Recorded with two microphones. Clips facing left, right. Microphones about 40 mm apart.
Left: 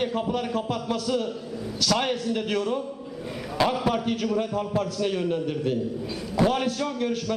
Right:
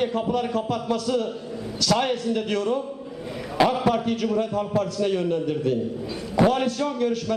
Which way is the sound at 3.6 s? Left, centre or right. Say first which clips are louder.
Right 4 dB; centre.